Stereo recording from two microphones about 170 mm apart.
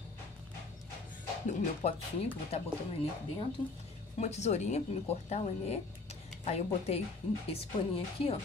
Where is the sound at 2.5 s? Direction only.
35° left (ahead or behind).